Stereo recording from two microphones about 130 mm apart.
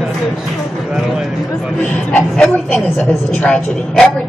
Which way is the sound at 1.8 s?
10° left (ahead or behind).